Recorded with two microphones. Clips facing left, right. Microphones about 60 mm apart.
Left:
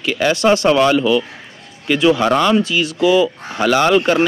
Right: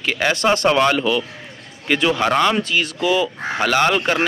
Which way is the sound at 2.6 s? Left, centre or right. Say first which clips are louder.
Left 4 dB; right.